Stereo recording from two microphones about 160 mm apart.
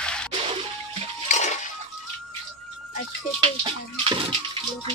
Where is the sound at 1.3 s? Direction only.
50° left (ahead or behind).